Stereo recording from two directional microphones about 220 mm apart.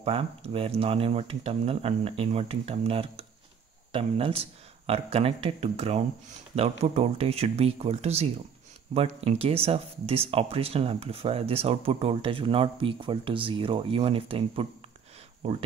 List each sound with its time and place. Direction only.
0.0 s speech: 25° right (ahead or behind)